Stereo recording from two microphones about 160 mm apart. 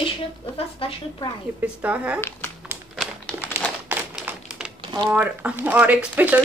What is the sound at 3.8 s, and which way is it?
Typewriter, 10° right (ahead or behind).